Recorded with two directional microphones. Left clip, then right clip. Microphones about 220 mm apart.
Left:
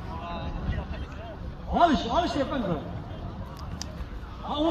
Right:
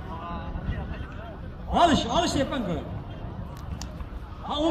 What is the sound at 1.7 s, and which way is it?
Speech, 35° right (ahead or behind).